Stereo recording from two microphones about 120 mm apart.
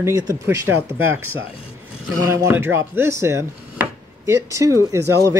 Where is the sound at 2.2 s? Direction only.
25° right (ahead or behind).